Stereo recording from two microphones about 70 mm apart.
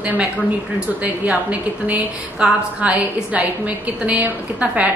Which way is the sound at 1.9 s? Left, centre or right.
Centre.